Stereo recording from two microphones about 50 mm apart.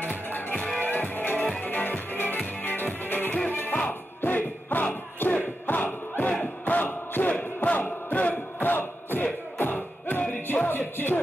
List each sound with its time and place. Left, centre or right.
0.0 s music: left